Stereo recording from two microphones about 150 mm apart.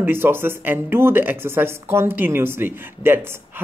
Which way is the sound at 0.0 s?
15° right (ahead or behind).